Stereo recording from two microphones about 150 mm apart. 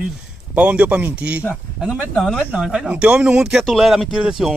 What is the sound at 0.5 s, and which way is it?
Speech, 10° right (ahead or behind).